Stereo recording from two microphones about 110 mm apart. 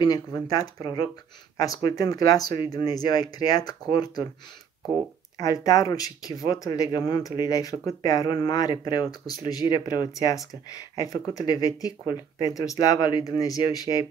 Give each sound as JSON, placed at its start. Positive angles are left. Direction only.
{"t": 0.0, "sound": "speech", "side_deg": 35}
{"t": 5.4, "sound": "speech", "side_deg": 35}